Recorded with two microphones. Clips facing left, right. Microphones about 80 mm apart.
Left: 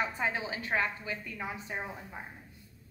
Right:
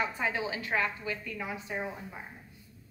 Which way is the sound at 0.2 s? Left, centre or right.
Left.